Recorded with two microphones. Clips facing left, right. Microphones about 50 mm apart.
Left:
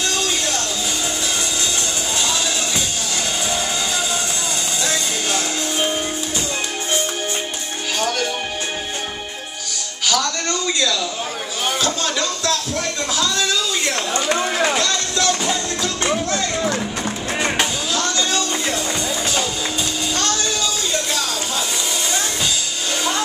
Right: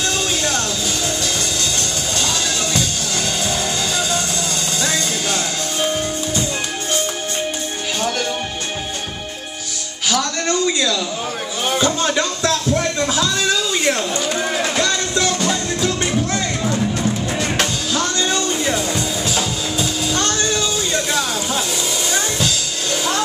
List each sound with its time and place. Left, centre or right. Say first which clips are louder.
1.8 s music: right 1 dB; centre
11.8 s music: right 6 dB; right
18.9 s music: right 1 dB; centre
20.2 s child singing: right 2 dB; right